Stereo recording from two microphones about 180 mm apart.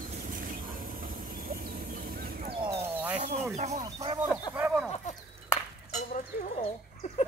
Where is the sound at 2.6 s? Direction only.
15° right (ahead or behind).